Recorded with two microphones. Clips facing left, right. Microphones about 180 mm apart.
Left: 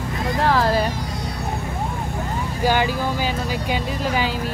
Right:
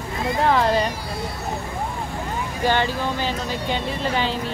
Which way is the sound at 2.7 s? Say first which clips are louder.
Left 1 dB; 10° left (ahead or behind).